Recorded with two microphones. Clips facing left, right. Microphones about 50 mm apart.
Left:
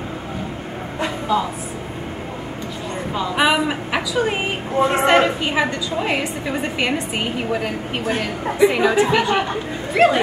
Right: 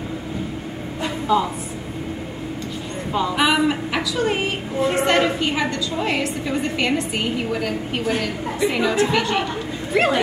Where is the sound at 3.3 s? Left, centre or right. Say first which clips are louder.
Left 2 dB; centre.